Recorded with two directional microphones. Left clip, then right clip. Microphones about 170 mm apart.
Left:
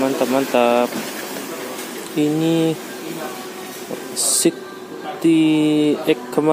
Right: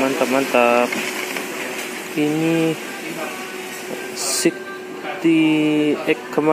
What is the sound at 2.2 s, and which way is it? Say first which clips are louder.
Speech: left 1 dB; 25° left (ahead or behind).